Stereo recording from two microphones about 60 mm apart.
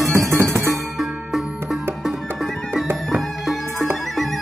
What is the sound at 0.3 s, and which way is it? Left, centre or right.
Music, right.